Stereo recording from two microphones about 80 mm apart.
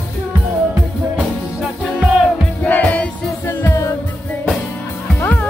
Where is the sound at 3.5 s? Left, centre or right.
Left.